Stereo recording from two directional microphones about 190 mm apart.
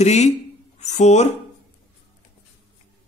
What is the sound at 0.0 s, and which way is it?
A man's voice, 35° left (ahead or behind).